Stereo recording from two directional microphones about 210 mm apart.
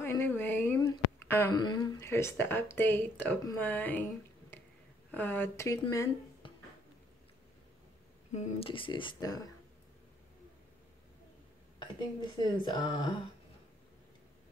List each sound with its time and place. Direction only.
0.0 s a woman's voice: 10° left (ahead or behind)
8.3 s speech: 30° left (ahead or behind)
12.6 s speech: 25° left (ahead or behind)